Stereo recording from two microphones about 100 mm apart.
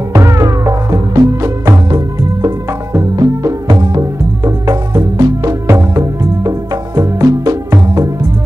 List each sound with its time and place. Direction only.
0.1 s music: 30° right (ahead or behind)